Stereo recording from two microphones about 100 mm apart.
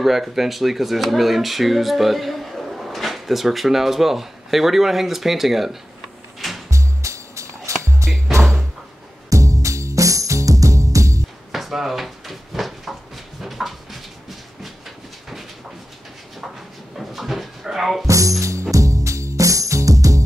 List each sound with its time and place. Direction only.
0.0 s speech: 5° right (ahead or behind)
6.7 s music: 30° right (ahead or behind)
8.4 s music: centre (ahead or behind)
9.3 s music: 35° right (ahead or behind)
11.5 s drawer open or close: centre (ahead or behind)
13.4 s a sound: centre (ahead or behind)
16.9 s dog: centre (ahead or behind)
18.0 s music: 30° right (ahead or behind)